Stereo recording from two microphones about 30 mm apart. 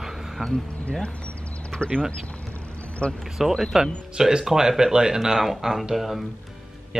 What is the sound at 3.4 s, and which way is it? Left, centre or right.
Speech, centre.